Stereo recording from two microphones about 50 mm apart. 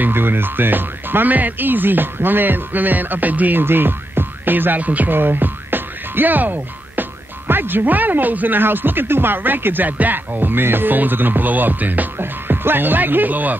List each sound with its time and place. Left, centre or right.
0.0 s speech: right
3.6 s music: right